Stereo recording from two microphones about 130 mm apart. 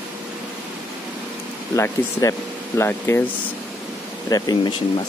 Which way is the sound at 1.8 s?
25° left (ahead or behind).